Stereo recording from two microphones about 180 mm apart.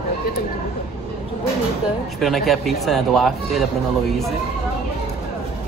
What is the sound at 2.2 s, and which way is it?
Speech, centre (ahead or behind).